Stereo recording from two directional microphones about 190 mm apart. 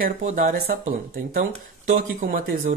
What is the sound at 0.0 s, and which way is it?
Speech, 40° right (ahead or behind).